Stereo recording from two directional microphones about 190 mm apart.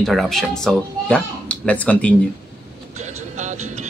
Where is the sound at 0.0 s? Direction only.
Centre (ahead or behind).